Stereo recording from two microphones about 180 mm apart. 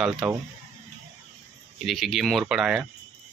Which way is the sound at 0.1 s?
20° right (ahead or behind).